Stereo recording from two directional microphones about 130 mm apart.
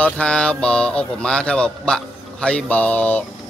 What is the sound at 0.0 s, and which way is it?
Speech, 10° left (ahead or behind).